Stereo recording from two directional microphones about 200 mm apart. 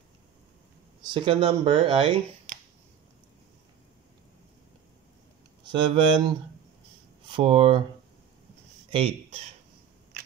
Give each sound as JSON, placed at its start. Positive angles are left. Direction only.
{"t": 1.0, "sound": "speech", "side_deg": -25}
{"t": 5.6, "sound": "speech", "side_deg": -25}